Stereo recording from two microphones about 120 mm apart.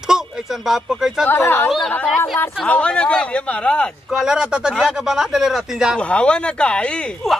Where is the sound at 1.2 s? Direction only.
15° left (ahead or behind).